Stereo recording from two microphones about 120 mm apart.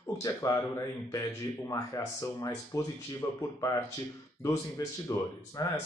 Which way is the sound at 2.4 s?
30° left (ahead or behind).